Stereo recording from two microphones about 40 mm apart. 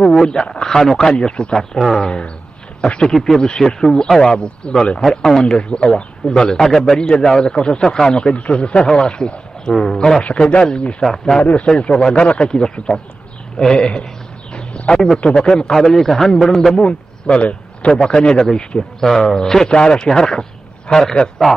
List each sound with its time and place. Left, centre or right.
0.1 s a man's voice: centre
1.1 s speech: left
1.5 s a man's voice: centre
5.1 s a man's voice: centre
5.6 s speech: left
6.6 s a man's voice: centre
10.2 s speech: left
11.0 s a man's voice: centre
14.5 s bird: left
15.1 s speech: left
15.7 s a man's voice: centre
16.8 s a man's voice: left